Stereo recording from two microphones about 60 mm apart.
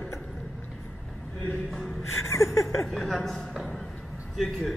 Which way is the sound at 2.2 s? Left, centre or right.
Left.